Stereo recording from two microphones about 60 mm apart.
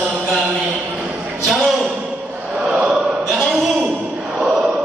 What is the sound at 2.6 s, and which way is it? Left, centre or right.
Chant, centre.